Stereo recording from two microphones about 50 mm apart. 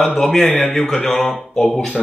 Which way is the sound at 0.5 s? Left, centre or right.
Left.